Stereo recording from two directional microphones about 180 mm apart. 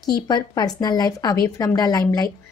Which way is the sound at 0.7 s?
20° left (ahead or behind).